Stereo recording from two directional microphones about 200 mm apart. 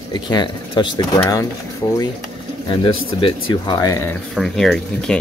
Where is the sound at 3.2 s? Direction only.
25° left (ahead or behind).